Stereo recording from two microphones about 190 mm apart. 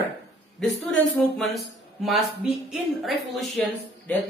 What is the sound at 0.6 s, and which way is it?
Speech, centre (ahead or behind).